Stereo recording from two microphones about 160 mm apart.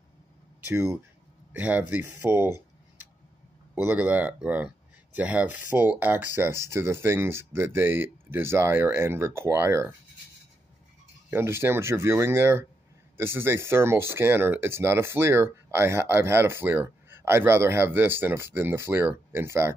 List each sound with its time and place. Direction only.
0.7 s speech: 15° right (ahead or behind)
11.2 s speech: 15° right (ahead or behind)